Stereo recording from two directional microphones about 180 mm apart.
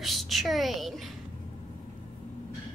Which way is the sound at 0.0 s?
Centre (ahead or behind).